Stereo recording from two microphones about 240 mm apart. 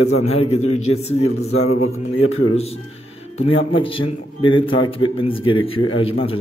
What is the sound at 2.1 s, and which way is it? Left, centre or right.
Speech, left.